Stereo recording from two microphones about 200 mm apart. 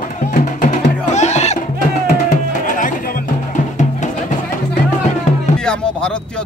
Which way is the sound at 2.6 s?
40° left (ahead or behind).